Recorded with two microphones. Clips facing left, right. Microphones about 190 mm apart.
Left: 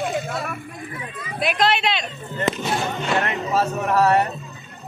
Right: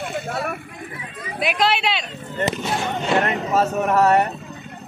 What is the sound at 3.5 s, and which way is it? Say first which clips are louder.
Speech: right 1 dB; 20° right (ahead or behind).